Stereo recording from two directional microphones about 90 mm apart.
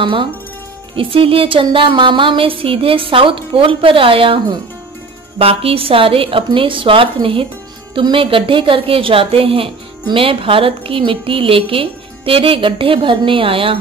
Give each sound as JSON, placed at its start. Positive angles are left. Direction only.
{"t": 0.0, "sound": "music", "side_deg": -70}
{"t": 0.9, "sound": "music", "side_deg": -85}
{"t": 5.4, "sound": "a woman's voice", "side_deg": -90}